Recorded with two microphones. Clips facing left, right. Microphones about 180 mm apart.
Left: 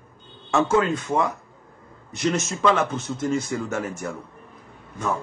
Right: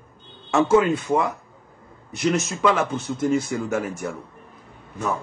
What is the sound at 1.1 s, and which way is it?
Speech, centre (ahead or behind).